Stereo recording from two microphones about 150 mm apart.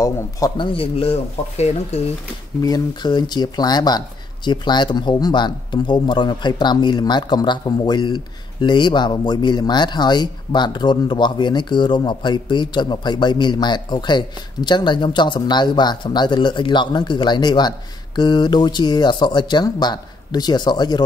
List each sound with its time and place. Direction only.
0.0 s speech: 25° left (ahead or behind)
0.7 s speech: 40° left (ahead or behind)
2.6 s speech: 25° left (ahead or behind)